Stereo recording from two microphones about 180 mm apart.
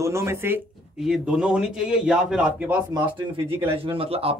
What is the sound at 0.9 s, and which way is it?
A man's voice, centre (ahead or behind).